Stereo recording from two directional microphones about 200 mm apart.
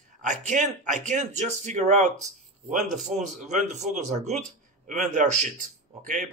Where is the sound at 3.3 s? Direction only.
35° right (ahead or behind).